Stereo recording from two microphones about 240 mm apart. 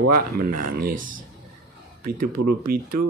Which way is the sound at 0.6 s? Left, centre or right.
Right.